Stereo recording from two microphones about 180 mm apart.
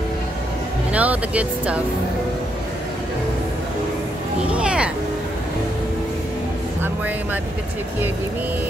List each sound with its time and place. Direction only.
0.9 s speech: 10° right (ahead or behind)
4.5 s music: 5° right (ahead or behind)